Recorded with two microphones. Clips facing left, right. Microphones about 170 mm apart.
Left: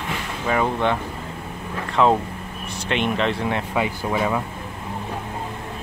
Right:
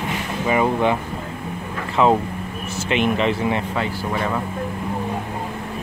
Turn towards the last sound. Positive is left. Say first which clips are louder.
# left 1 dB
turn(degrees=10)  # may be behind; listen again after turning